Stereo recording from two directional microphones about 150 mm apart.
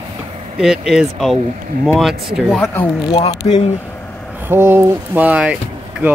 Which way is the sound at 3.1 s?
40° left (ahead or behind).